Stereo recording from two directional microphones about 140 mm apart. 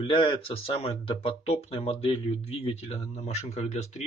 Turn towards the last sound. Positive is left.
turn(degrees=50)  # may be behind; listen again after turning